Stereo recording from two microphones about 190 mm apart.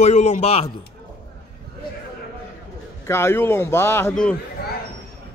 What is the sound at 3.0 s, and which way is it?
A man's voice, 15° left (ahead or behind).